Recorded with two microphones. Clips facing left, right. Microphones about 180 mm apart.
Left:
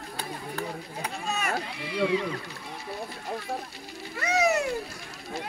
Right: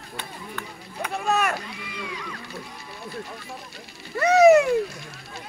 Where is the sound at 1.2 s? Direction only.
60° right (ahead or behind).